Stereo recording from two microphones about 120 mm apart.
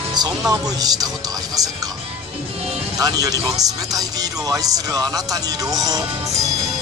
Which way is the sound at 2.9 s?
30° right (ahead or behind).